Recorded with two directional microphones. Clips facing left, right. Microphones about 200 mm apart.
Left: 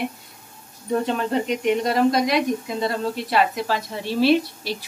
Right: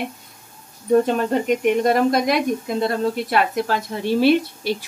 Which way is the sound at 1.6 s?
50° right (ahead or behind).